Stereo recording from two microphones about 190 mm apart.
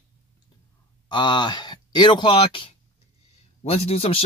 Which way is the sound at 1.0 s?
25° left (ahead or behind).